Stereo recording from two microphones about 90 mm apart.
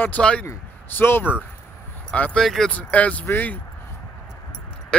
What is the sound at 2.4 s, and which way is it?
Speech, centre (ahead or behind).